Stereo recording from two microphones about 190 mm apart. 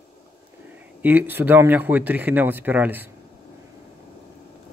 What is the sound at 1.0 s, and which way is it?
Speech, 10° right (ahead or behind).